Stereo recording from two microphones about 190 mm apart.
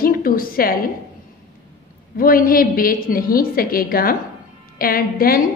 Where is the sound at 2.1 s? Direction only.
50° left (ahead or behind).